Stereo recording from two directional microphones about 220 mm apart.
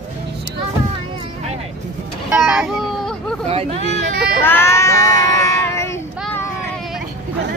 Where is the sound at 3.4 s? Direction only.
30° right (ahead or behind).